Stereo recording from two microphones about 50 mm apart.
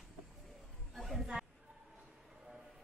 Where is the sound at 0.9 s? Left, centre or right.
Centre.